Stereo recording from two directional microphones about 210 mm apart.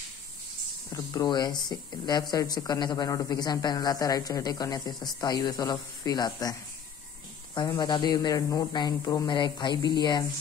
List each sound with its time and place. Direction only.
0.8 s speech: 20° left (ahead or behind)
7.5 s speech: 20° left (ahead or behind)